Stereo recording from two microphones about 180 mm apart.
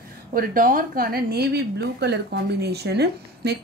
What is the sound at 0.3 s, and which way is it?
A woman's voice, 50° right (ahead or behind).